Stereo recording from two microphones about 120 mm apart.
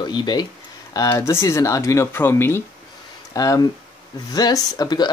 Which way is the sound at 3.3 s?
30° left (ahead or behind).